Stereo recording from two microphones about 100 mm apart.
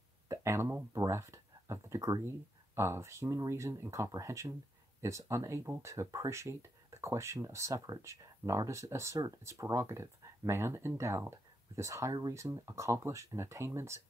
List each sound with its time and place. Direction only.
0.3 s speech: 30° right (ahead or behind)